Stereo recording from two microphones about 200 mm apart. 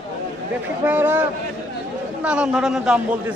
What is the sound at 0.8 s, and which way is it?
A man's voice, 10° right (ahead or behind).